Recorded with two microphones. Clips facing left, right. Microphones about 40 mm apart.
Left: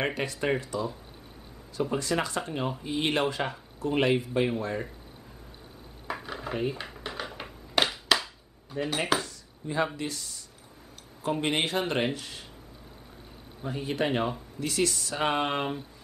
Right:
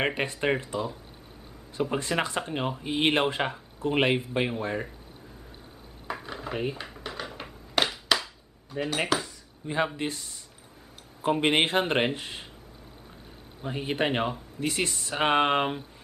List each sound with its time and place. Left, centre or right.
0.0 s speech: right
1.9 s speech: right
6.0 s dishes: centre
6.8 s a sound: centre
8.8 s speech: centre
9.6 s speech: right
13.6 s speech: right